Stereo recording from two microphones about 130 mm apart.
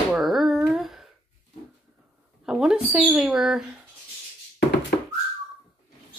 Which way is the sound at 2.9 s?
10° right (ahead or behind).